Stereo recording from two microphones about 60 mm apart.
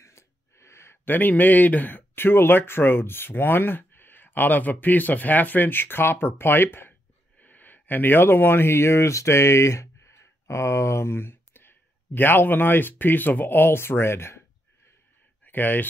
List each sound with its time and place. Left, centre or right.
0.0 s gasp: left
1.0 s speech: left
15.4 s speech: left